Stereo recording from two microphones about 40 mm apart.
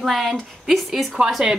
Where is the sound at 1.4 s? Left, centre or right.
Centre.